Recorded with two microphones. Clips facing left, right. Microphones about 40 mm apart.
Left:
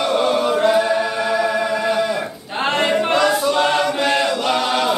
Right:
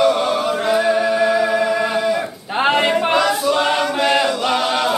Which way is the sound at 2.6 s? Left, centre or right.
Centre.